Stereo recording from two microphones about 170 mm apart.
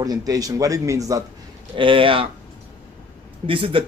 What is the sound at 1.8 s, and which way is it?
Speech, 30° right (ahead or behind).